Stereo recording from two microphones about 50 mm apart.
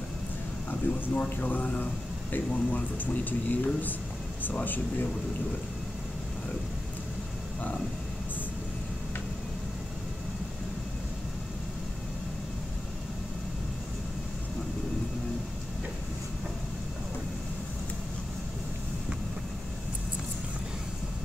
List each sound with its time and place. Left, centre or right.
0.7 s speech: left